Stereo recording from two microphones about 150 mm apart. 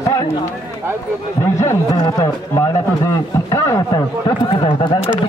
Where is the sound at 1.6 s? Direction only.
20° left (ahead or behind).